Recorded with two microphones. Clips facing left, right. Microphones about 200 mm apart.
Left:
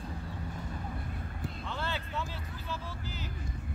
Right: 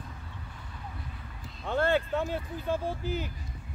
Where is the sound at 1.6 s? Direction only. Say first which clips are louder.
Right 14 dB; 55° right (ahead or behind).